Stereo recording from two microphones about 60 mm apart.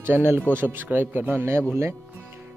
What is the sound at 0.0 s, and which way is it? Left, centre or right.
Speech, right.